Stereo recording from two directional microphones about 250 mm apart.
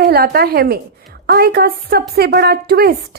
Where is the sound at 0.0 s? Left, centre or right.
Right.